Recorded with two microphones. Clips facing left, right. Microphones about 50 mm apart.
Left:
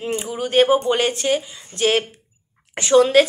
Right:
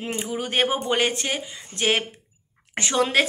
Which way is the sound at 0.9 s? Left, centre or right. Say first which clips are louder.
Left 4 dB; right.